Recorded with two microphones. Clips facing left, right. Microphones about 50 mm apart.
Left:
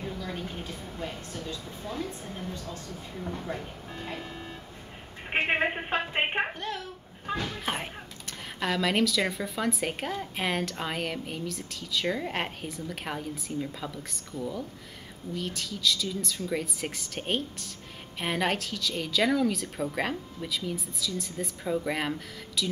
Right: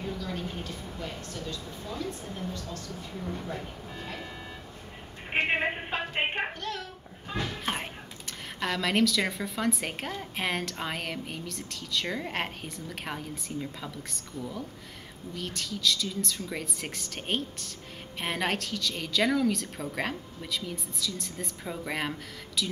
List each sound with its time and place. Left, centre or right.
0.4 s a sound: centre
1.1 s a woman's voice: centre
2.2 s speech: centre
2.5 s a woman's voice: left
5.3 s a sound: centre
5.9 s music: left
7.6 s speech: centre